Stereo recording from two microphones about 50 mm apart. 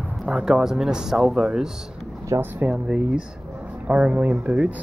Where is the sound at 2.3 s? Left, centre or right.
Right.